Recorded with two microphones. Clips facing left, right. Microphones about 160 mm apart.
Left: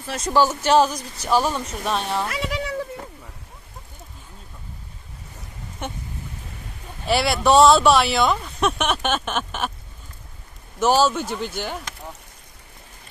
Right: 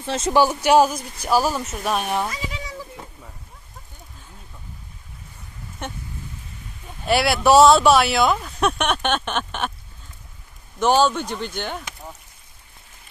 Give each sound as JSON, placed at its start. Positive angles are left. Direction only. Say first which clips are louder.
{"t": 0.0, "sound": "speech", "louder": "right 3 dB", "side_deg": -25}
{"t": 0.4, "sound": "speech", "louder": "right 1 dB", "side_deg": -10}
{"t": 2.2, "sound": "speech", "louder": "left 4 dB", "side_deg": 70}
{"t": 7.1, "sound": "speech", "louder": "right 2 dB", "side_deg": 0}
{"t": 10.8, "sound": "speech", "louder": "even", "side_deg": 5}